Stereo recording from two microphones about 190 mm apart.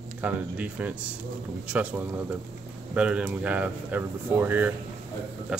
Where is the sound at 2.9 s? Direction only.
5° right (ahead or behind).